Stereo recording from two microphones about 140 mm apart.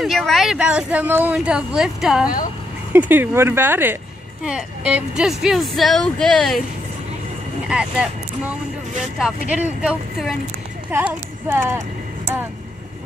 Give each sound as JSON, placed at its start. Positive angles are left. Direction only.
{"t": 0.0, "sound": "speech", "side_deg": 0}
{"t": 7.6, "sound": "speech", "side_deg": -5}